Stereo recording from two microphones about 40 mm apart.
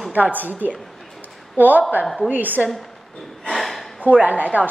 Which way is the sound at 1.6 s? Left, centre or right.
Right.